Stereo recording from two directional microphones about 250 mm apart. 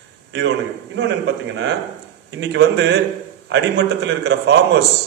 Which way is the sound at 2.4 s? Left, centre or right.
Right.